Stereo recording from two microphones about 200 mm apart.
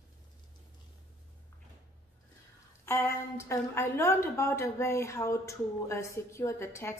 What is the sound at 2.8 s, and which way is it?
A woman's voice, 10° left (ahead or behind).